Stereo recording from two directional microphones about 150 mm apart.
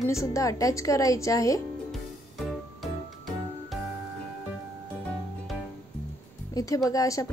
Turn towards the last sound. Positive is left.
turn(degrees=25)  # may be behind; listen again after turning